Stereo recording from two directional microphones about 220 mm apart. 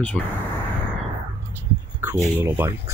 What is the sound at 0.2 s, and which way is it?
Speech, 5° left (ahead or behind).